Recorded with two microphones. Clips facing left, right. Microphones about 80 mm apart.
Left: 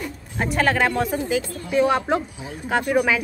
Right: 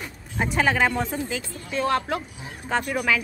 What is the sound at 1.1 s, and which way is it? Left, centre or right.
A woman's voice, centre.